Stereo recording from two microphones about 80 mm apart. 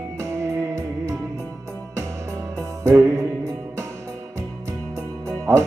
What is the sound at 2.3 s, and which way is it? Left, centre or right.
Music, right.